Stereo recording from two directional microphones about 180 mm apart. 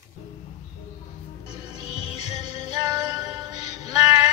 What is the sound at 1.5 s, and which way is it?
Music, 25° right (ahead or behind).